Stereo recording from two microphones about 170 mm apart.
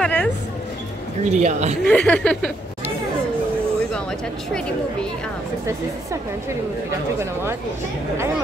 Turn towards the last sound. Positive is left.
turn(degrees=-15)  # may be behind; listen again after turning